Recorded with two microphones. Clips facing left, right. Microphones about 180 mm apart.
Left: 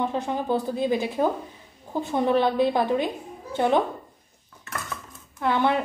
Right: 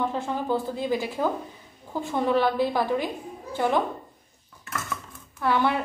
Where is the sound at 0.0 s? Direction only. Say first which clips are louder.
Left 1 dB; 20° left (ahead or behind).